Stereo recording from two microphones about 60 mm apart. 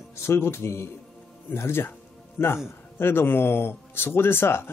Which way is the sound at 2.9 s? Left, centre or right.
Left.